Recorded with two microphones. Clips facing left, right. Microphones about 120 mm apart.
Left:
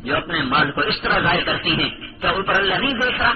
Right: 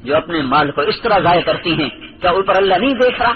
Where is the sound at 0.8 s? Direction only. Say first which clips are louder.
Right 8 dB; 45° right (ahead or behind).